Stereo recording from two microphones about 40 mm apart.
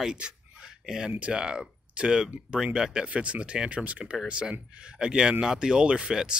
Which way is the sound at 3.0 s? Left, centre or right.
Right.